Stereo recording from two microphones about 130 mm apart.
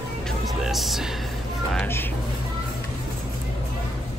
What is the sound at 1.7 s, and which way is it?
Speech, 15° left (ahead or behind).